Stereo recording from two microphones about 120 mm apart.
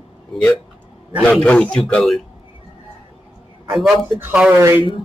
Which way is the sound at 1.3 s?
10° left (ahead or behind).